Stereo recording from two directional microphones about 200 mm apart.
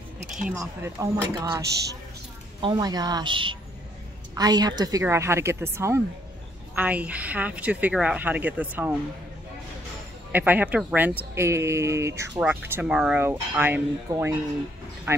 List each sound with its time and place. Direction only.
0.5 s speech: 15° right (ahead or behind)
2.6 s a woman's voice: 20° right (ahead or behind)
10.3 s speech: 10° right (ahead or behind)